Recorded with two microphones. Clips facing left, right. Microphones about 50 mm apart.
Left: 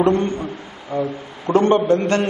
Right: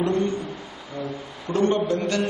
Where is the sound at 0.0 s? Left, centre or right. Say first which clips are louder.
Left 6 dB; left.